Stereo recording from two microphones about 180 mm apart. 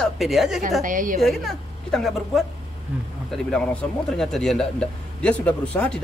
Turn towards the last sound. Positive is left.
turn(degrees=5)  # may be behind; listen again after turning